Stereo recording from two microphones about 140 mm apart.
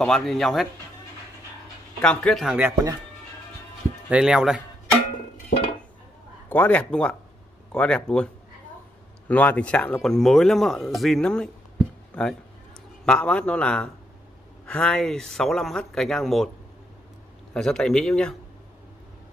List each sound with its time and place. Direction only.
0.0 s speech: 5° left (ahead or behind)
2.0 s speech: 5° left (ahead or behind)
2.4 s chopping: 10° right (ahead or behind)
2.7 s speech: 25° right (ahead or behind)
4.1 s speech: 5° right (ahead or behind)
6.5 s a man's voice: 10° left (ahead or behind)
9.3 s a man's voice: 10° left (ahead or behind)
17.6 s speech: 5° left (ahead or behind)